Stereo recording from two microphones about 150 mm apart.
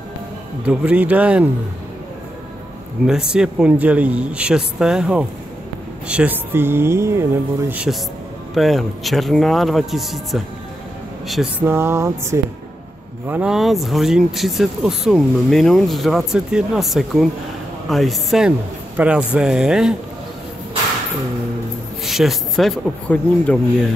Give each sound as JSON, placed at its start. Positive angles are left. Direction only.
{"t": 0.7, "sound": "speech", "side_deg": -10}
{"t": 3.1, "sound": "speech", "side_deg": -5}
{"t": 8.5, "sound": "speech", "side_deg": 0}
{"t": 11.6, "sound": "speech", "side_deg": -15}
{"t": 13.3, "sound": "speech", "side_deg": -5}
{"t": 22.0, "sound": "speech", "side_deg": 0}